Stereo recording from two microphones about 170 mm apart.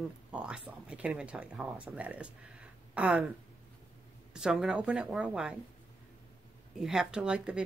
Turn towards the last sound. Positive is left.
turn(degrees=-5)  # may be behind; listen again after turning